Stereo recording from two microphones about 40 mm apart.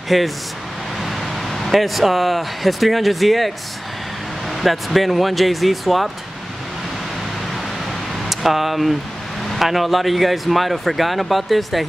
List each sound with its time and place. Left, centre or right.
0.1 s speech: centre
8.3 s speech: centre